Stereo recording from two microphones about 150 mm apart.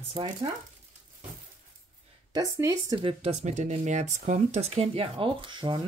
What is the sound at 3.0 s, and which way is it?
Speech, 35° right (ahead or behind).